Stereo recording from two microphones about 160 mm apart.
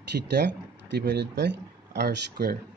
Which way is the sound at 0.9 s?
90° right.